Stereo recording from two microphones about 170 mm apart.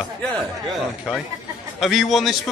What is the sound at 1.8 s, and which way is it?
Speech, centre (ahead or behind).